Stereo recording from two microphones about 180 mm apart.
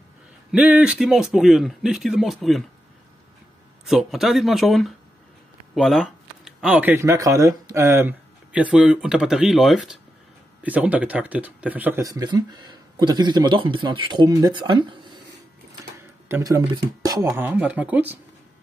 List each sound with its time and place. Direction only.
0.5 s speech: 5° right (ahead or behind)
3.8 s speech: centre (ahead or behind); by 15.1 s 25° right (ahead or behind)
15.8 s speech: 15° right (ahead or behind)